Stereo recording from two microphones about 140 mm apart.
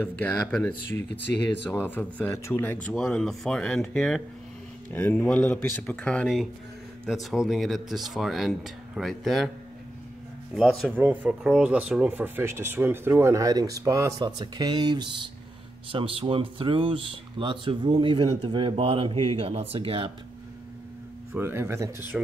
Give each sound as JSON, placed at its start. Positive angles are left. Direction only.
{"t": 0.0, "sound": "speech", "side_deg": 15}
{"t": 10.5, "sound": "speech", "side_deg": 0}
{"t": 11.0, "sound": "speech", "side_deg": -15}
{"t": 21.3, "sound": "speech", "side_deg": -15}
{"t": 22.1, "sound": "speech", "side_deg": -10}